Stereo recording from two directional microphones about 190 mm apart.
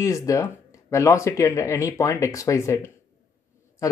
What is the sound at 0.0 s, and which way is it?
Speech, 15° left (ahead or behind).